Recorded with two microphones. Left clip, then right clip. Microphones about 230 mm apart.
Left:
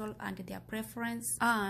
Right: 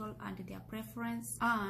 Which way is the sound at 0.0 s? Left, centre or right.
Left.